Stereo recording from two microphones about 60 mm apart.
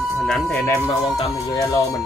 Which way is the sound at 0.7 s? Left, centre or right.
Left.